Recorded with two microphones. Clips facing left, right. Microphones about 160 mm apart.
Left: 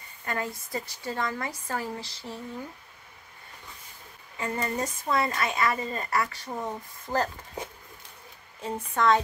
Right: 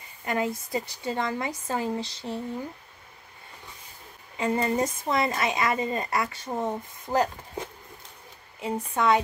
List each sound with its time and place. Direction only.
0.2 s speech: 20° right (ahead or behind)
4.4 s speech: 20° right (ahead or behind)
8.8 s speech: 10° right (ahead or behind)